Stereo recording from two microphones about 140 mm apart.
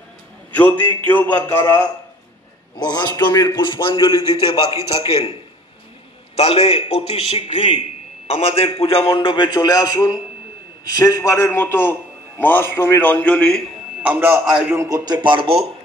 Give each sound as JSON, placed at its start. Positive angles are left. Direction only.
{"t": 1.0, "sound": "a man's voice", "side_deg": 15}
{"t": 2.8, "sound": "a man's voice", "side_deg": 30}
{"t": 6.3, "sound": "a man's voice", "side_deg": 45}
{"t": 14.0, "sound": "a man's voice", "side_deg": -10}
{"t": 14.7, "sound": "speech", "side_deg": -20}
{"t": 15.2, "sound": "speech", "side_deg": -40}